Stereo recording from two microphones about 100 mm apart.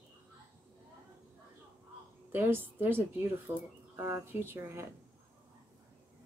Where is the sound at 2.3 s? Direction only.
20° right (ahead or behind).